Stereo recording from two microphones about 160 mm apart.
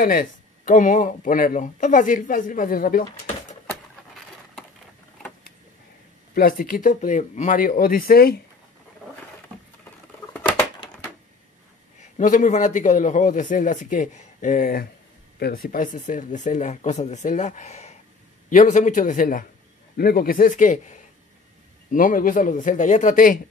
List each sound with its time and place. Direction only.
0.0 s speech: 60° left (ahead or behind)
6.3 s speech: 60° left (ahead or behind)
10.3 s crushing: 10° left (ahead or behind)
12.2 s a man's voice: 50° left (ahead or behind)
15.3 s a man's voice: 75° left (ahead or behind); by 19.4 s 55° left (ahead or behind)
20.0 s speech: 70° left (ahead or behind); by 21.0 s 50° left (ahead or behind)
21.9 s speech: 60° left (ahead or behind)